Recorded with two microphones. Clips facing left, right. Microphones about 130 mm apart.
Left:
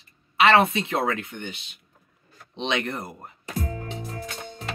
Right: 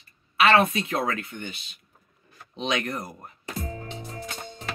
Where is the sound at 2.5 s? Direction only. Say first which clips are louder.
Left 1 dB; 30° left (ahead or behind).